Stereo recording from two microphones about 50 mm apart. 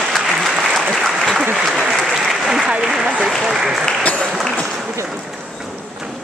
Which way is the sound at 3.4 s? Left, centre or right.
Centre.